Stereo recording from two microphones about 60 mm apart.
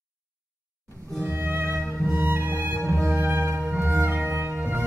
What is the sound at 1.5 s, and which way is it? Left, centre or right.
Music, right.